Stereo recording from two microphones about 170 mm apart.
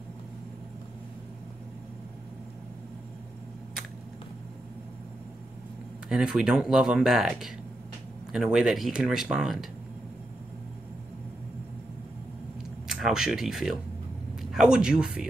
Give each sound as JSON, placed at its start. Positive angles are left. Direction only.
{"t": 6.0, "sound": "speech", "side_deg": -5}
{"t": 12.8, "sound": "speech", "side_deg": -5}